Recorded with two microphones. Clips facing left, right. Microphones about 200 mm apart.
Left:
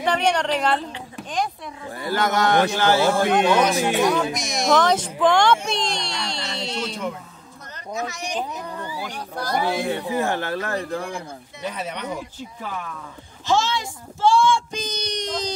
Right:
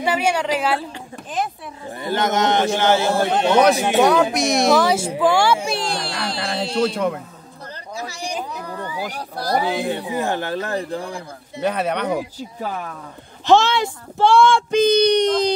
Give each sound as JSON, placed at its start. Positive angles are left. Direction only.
{"t": 0.0, "sound": "a woman's voice", "side_deg": -5}
{"t": 2.0, "sound": "speech", "side_deg": -20}
{"t": 3.5, "sound": "speech", "side_deg": -65}
{"t": 4.7, "sound": "speech", "side_deg": -10}
{"t": 7.9, "sound": "speech", "side_deg": -30}
{"t": 9.7, "sound": "speech", "side_deg": -15}
{"t": 11.6, "sound": "speech", "side_deg": -65}
{"t": 12.4, "sound": "speech", "side_deg": -40}
{"t": 13.5, "sound": "speech", "side_deg": -65}